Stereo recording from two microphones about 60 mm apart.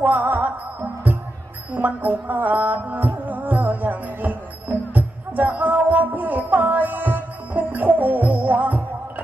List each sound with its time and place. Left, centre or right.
0.0 s music: right
1.7 s music: right